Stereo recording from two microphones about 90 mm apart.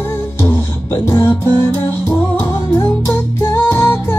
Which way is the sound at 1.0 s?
25° left (ahead or behind).